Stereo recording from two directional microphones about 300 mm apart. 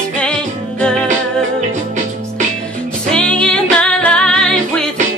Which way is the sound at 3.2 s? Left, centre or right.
Centre.